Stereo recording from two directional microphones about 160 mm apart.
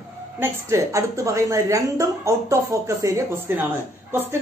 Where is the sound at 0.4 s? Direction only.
20° right (ahead or behind).